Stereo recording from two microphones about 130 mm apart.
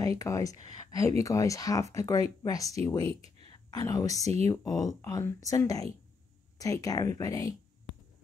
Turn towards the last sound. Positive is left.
turn(degrees=25)  # may be behind; listen again after turning